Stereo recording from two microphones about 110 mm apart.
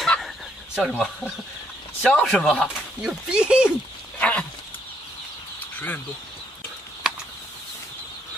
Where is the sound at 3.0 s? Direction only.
5° right (ahead or behind).